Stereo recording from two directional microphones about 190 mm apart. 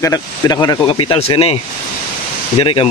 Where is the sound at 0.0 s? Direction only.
20° left (ahead or behind).